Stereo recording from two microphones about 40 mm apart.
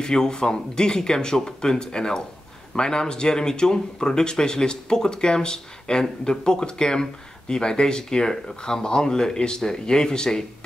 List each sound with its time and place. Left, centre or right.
0.0 s speech: centre